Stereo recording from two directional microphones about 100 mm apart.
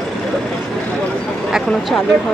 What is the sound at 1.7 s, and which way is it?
Speech, 5° left (ahead or behind).